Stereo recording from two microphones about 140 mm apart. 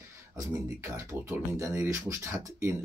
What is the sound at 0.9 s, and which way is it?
Speech, 25° right (ahead or behind).